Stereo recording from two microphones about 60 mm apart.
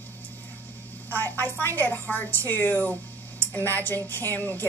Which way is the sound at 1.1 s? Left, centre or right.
Left.